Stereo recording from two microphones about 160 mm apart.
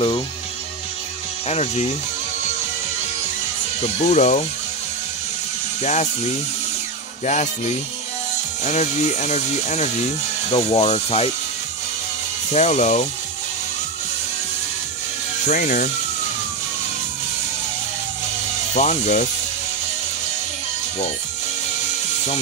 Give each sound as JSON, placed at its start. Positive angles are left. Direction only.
{"t": 1.5, "sound": "speech", "side_deg": 40}
{"t": 3.8, "sound": "speech", "side_deg": 45}
{"t": 5.8, "sound": "speech", "side_deg": 45}
{"t": 12.5, "sound": "speech", "side_deg": 45}
{"t": 15.4, "sound": "speech", "side_deg": 50}
{"t": 18.7, "sound": "speech", "side_deg": 45}